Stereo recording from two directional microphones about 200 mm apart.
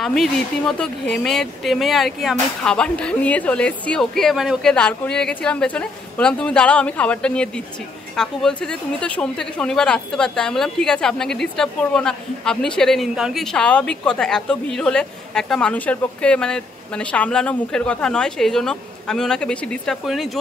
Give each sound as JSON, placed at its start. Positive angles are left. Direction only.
{"t": 0.0, "sound": "a woman's voice", "side_deg": 0}